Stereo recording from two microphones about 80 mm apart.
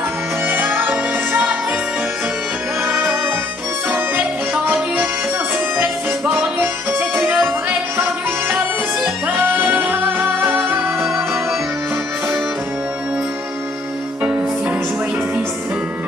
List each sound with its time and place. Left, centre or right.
0.5 s music: right
2.8 s music: right
5.8 s music: right